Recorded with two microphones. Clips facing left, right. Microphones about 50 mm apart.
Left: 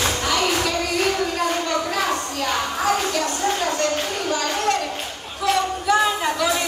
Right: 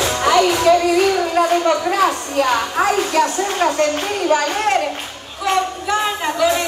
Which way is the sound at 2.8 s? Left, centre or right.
Right.